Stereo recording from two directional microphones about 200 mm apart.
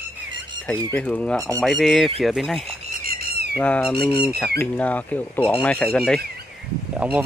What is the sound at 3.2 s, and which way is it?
Squawk, 50° right (ahead or behind).